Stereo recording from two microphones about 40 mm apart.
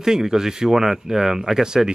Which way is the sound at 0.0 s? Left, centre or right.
Centre.